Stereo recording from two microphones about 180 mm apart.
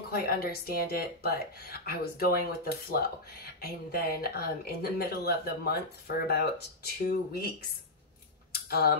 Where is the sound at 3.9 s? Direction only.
55° left (ahead or behind).